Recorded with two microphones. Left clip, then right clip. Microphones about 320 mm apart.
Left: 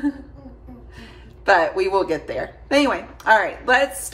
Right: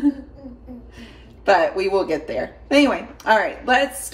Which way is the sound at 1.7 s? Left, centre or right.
Centre.